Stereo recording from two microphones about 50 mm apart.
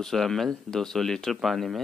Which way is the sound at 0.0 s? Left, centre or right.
Centre.